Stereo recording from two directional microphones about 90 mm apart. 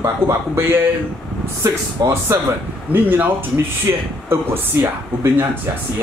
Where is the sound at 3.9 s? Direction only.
35° right (ahead or behind).